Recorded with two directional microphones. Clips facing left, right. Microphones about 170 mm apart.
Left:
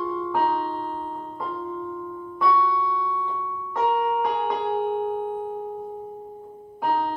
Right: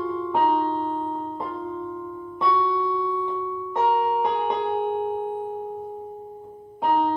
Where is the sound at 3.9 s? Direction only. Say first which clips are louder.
Even; 30° right (ahead or behind).